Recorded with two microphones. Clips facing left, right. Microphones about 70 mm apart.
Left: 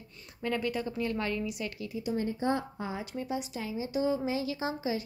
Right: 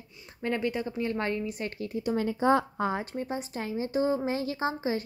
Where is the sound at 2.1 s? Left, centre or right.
Right.